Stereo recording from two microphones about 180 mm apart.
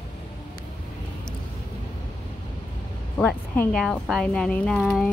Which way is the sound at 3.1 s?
5° left (ahead or behind).